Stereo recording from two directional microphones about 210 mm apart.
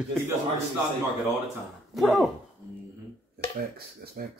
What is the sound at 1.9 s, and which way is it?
Speech, centre (ahead or behind).